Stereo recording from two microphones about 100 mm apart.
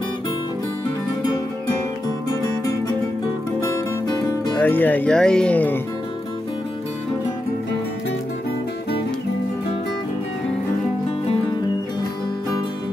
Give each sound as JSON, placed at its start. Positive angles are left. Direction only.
{"t": 3.6, "sound": "music", "side_deg": 30}
{"t": 4.6, "sound": "speech", "side_deg": 20}